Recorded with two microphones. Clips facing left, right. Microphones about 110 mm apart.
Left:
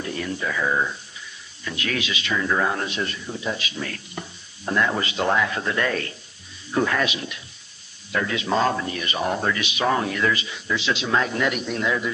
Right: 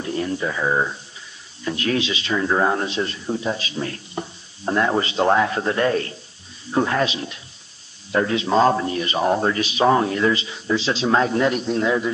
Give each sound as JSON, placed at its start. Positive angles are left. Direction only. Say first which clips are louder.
{"t": 0.0, "sound": "speech", "louder": "right 4 dB", "side_deg": -30}